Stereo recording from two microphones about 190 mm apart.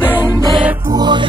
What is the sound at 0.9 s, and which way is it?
Music, 20° right (ahead or behind).